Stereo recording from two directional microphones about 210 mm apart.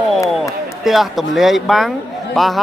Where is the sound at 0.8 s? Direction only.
Centre (ahead or behind).